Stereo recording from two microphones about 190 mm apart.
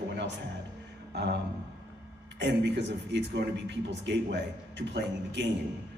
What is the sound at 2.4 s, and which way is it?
A man's voice, 65° right (ahead or behind).